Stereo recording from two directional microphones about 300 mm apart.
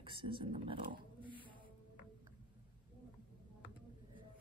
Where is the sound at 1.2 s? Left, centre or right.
Centre.